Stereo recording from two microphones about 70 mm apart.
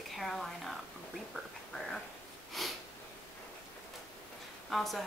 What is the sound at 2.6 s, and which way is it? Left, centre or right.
Speech, centre.